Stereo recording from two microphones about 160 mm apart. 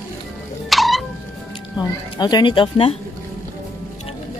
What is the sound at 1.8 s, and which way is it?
Speech, 25° left (ahead or behind).